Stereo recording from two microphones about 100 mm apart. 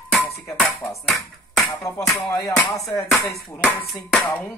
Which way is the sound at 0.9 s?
Centre (ahead or behind).